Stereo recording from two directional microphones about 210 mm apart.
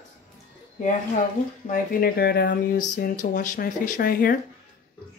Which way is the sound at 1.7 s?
45° left (ahead or behind).